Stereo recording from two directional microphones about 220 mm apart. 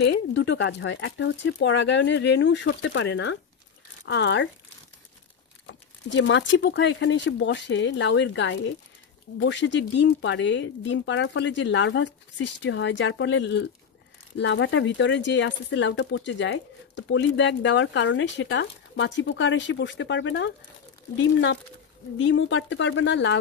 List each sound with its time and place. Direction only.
0.1 s speech: 50° left (ahead or behind)
5.7 s speech: 55° left (ahead or behind)